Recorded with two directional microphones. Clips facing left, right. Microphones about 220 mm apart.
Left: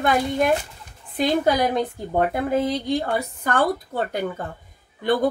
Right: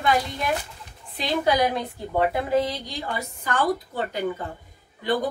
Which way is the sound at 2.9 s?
60° left (ahead or behind).